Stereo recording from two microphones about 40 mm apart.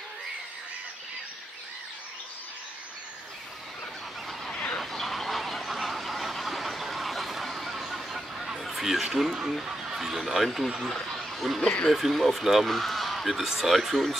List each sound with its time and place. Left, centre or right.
4.7 s goose: centre
8.5 s speech: centre
11.6 s speech: left
11.9 s speech: centre